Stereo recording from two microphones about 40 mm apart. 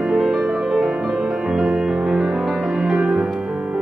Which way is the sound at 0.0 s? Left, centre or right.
Centre.